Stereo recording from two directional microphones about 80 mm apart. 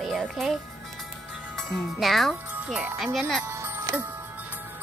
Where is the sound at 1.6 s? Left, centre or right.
Centre.